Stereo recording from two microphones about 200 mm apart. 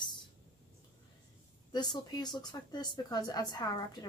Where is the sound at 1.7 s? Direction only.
20° left (ahead or behind).